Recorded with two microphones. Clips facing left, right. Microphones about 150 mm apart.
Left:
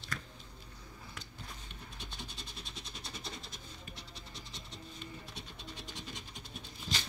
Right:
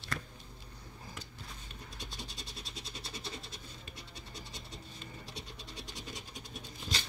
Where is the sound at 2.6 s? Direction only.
35° right (ahead or behind).